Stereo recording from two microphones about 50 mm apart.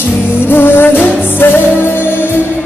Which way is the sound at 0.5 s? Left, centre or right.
Left.